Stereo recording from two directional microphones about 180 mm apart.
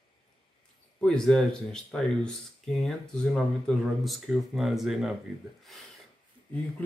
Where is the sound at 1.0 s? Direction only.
5° left (ahead or behind).